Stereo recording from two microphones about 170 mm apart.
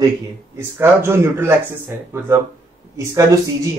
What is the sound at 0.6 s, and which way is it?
Speech, 15° right (ahead or behind).